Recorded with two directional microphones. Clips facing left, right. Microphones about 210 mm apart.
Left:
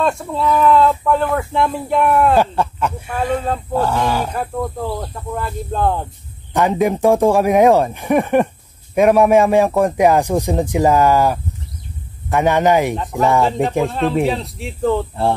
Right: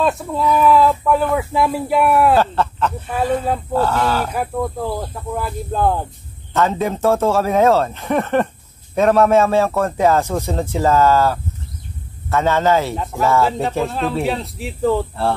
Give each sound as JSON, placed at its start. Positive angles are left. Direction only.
{"t": 0.0, "sound": "speech", "side_deg": -5}
{"t": 2.3, "sound": "speech", "side_deg": 10}
{"t": 4.3, "sound": "speech", "side_deg": -5}
{"t": 6.5, "sound": "speech", "side_deg": 15}
{"t": 13.4, "sound": "speech", "side_deg": 0}